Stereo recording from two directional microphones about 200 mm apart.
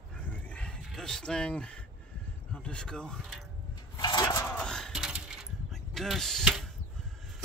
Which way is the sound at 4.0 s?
20° left (ahead or behind).